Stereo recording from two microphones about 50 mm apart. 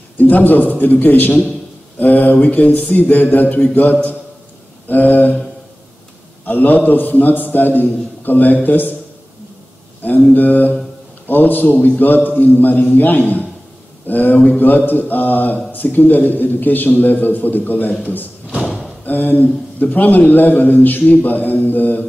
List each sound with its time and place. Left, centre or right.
0.2 s a man's voice: left
2.3 s a sound: left
4.8 s a sound: left
6.4 s a man's voice: left
10.3 s a man's voice: left
18.5 s thump: centre
19.0 s a man's voice: left